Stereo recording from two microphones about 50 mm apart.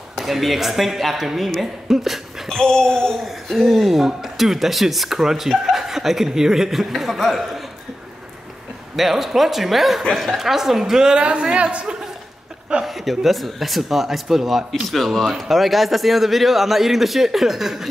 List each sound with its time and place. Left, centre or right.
0.2 s speech: centre
2.6 s speech: centre
3.5 s speech: centre
8.9 s a woman's voice: centre; by 12.0 s right
12.8 s speech: centre